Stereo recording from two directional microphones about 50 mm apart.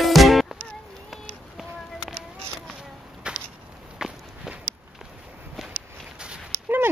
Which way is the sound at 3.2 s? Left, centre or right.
Right.